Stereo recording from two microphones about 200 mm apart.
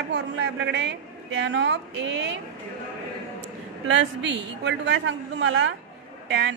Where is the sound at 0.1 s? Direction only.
60° right (ahead or behind).